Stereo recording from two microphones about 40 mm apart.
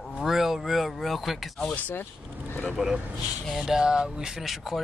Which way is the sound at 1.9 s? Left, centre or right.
Left.